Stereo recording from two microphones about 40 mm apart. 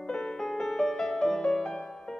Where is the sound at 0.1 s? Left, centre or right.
Centre.